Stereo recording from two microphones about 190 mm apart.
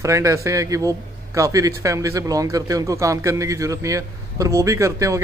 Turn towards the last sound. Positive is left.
turn(degrees=-15)  # may be behind; listen again after turning